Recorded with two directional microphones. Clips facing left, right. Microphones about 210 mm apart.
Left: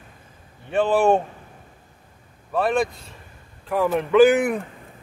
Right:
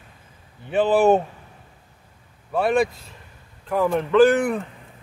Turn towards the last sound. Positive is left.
turn(degrees=10)  # may be behind; listen again after turning